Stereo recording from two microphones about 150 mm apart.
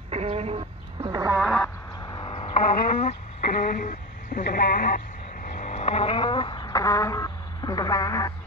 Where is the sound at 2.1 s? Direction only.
30° left (ahead or behind).